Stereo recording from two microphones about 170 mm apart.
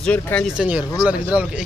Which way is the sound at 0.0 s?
10° left (ahead or behind).